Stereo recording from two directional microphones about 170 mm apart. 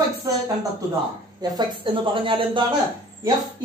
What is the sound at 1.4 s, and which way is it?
Speech, 25° right (ahead or behind).